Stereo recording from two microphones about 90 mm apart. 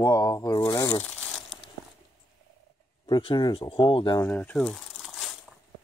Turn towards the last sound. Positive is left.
turn(degrees=0)  # may be behind; listen again after turning